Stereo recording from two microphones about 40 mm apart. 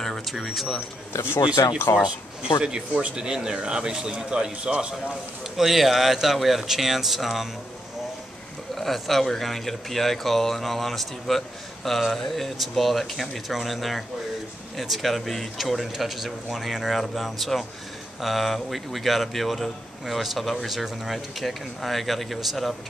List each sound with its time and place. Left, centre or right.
0.0 s a sound: centre
0.7 s speech: left
3.2 s a man's voice: centre
5.6 s speech: centre
8.7 s speech: centre